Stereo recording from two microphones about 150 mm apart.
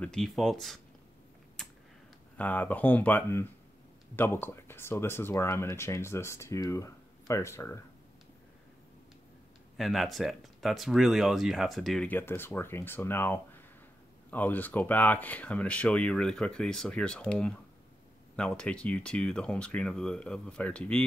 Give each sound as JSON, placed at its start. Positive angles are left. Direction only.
{"t": 0.0, "sound": "speech", "side_deg": 5}
{"t": 1.6, "sound": "typing", "side_deg": 0}
{"t": 2.3, "sound": "speech", "side_deg": 10}
{"t": 9.8, "sound": "speech", "side_deg": 0}
{"t": 12.1, "sound": "speech", "side_deg": 15}